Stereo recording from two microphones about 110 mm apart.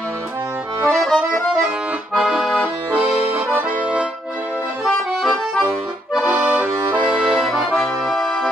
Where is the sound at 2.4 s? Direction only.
10° left (ahead or behind).